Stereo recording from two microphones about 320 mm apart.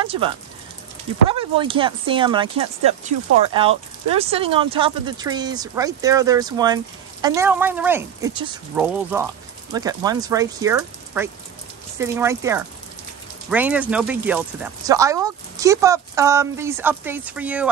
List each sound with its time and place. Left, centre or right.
0.0 s speech: centre
1.3 s speech: centre